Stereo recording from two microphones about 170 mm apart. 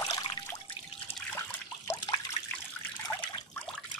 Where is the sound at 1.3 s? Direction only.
15° left (ahead or behind).